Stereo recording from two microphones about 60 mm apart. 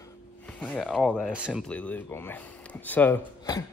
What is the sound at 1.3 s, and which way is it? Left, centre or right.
Speech, centre.